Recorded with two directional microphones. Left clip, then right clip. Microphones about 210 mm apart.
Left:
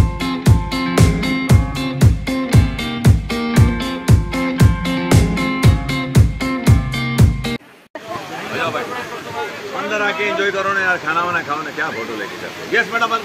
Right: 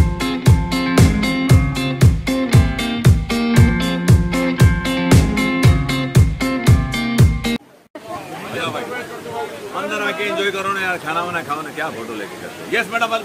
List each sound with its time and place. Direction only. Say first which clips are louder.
0.2 s music: right 1 dB; centre (ahead or behind)
9.9 s a sound: left 3 dB; 45° right (ahead or behind)
12.7 s a man's voice: left 2 dB; 30° right (ahead or behind)